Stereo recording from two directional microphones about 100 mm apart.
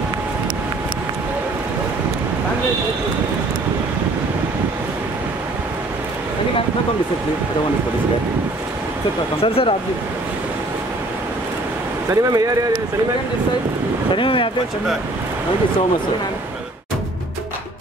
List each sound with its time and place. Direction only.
9.4 s speech: 70° left (ahead or behind)
12.1 s speech: 35° right (ahead or behind)
14.1 s speech: 55° left (ahead or behind)